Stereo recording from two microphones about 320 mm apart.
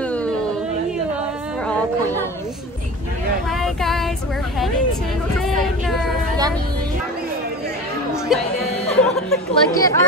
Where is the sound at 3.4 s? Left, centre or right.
Centre.